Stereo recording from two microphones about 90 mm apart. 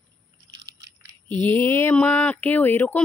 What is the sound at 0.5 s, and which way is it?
Biting, 40° right (ahead or behind).